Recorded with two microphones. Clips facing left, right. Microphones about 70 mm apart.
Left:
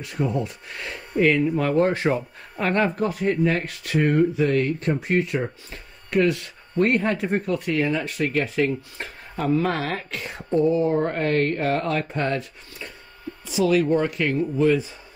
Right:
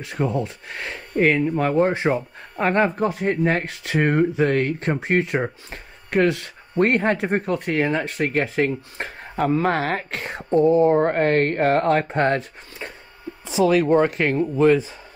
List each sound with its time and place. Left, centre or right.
0.3 s speech: right
1.6 s speech: centre; by 14.5 s right